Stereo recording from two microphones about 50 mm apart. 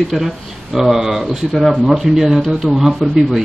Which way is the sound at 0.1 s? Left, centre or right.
Centre.